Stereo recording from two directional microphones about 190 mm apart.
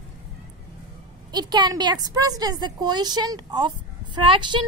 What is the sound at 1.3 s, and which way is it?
A woman's voice, 20° right (ahead or behind).